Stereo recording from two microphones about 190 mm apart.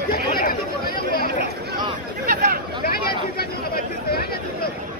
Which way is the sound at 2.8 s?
55° left (ahead or behind).